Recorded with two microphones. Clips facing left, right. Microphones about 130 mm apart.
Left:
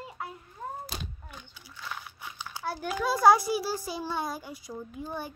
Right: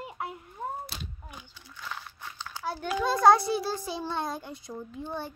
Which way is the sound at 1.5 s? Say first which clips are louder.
Even; 5° left (ahead or behind).